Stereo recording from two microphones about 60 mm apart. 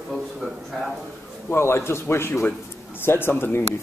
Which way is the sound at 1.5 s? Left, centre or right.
Left.